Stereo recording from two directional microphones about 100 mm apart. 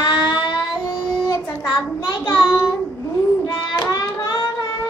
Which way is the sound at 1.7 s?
40° left (ahead or behind).